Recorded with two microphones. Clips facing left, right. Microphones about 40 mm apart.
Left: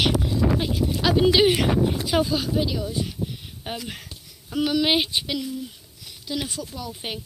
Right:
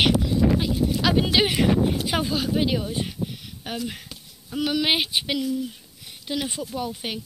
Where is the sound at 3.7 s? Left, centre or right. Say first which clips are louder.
Even; centre.